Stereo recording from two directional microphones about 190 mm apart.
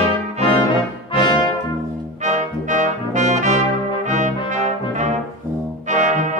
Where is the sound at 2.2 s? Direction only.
40° right (ahead or behind).